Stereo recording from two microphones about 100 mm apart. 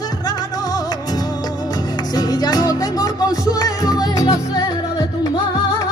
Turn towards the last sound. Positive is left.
turn(degrees=40)  # may be behind; listen again after turning